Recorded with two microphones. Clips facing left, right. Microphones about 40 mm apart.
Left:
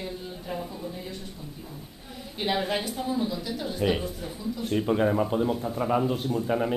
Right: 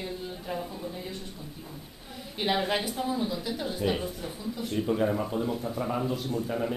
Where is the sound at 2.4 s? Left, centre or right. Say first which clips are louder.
Even; centre.